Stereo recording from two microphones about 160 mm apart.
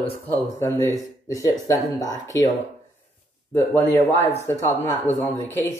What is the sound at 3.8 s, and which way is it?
Speech, 15° left (ahead or behind).